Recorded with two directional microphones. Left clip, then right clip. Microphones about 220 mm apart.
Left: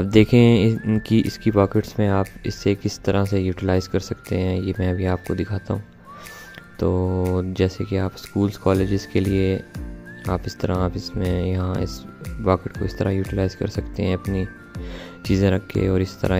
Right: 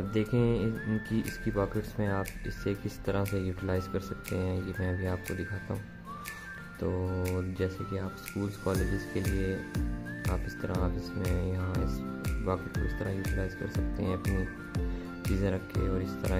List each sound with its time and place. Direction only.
0.1 s speech: 40° left (ahead or behind)
6.8 s speech: 30° left (ahead or behind)
15.3 s speech: 35° left (ahead or behind)